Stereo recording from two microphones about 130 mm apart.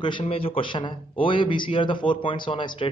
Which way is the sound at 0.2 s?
45° left (ahead or behind).